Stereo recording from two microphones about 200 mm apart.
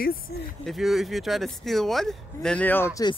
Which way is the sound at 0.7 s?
Centre (ahead or behind).